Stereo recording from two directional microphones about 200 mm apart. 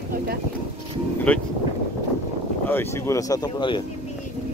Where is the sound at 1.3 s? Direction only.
10° left (ahead or behind).